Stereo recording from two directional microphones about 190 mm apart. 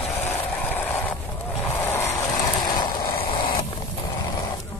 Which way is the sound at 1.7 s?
10° left (ahead or behind).